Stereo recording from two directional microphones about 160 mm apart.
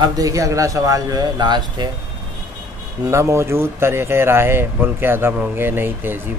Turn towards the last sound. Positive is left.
turn(degrees=-15)  # may be behind; listen again after turning